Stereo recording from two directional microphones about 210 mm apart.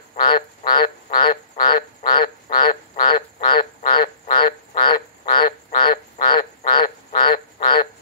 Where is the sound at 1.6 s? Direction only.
20° left (ahead or behind).